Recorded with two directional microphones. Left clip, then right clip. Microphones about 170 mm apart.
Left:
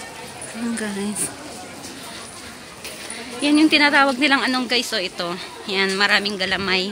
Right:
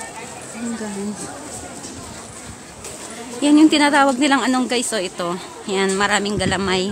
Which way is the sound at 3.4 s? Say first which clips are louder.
Right 2 dB; 25° right (ahead or behind).